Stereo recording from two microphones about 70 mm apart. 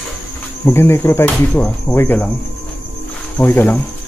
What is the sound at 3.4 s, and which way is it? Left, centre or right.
Speech, left.